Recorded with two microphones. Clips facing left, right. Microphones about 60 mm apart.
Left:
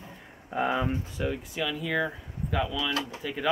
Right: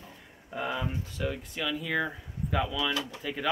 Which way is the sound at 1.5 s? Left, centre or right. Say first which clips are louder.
Left 1 dB; centre.